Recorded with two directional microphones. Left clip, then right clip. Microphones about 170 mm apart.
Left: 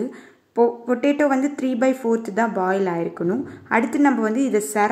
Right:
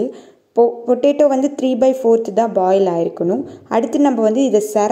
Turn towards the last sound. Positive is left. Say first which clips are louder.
# right 7 dB
turn(degrees=30)  # may be behind; listen again after turning